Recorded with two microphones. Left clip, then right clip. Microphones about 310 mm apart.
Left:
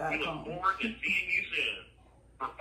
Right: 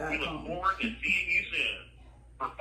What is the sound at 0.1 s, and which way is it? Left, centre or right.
A man's voice, centre.